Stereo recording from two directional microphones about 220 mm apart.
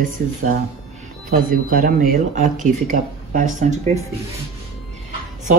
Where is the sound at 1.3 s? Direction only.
40° right (ahead or behind).